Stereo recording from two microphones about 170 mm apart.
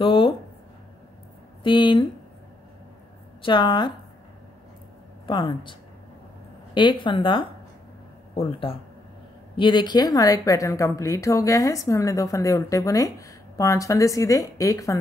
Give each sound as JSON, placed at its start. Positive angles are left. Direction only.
{"t": 0.0, "sound": "speech", "side_deg": 30}
{"t": 1.6, "sound": "speech", "side_deg": 30}
{"t": 3.4, "sound": "a woman's voice", "side_deg": 25}
{"t": 5.2, "sound": "a woman's voice", "side_deg": 25}